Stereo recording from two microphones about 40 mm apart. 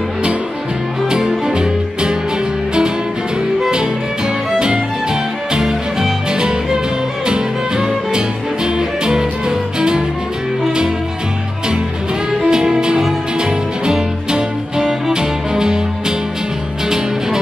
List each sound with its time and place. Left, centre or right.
1.5 s music: right
5.5 s music: centre
12.4 s music: centre